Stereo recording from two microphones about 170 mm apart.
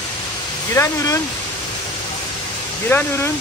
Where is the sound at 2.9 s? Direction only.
10° left (ahead or behind).